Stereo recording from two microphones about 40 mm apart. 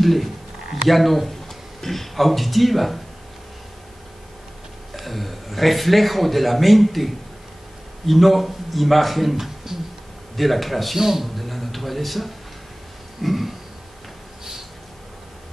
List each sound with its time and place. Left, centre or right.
0.0 s speech: centre
4.9 s speech: centre